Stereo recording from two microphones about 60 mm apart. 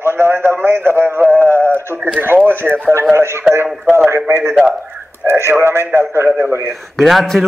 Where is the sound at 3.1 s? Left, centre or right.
Right.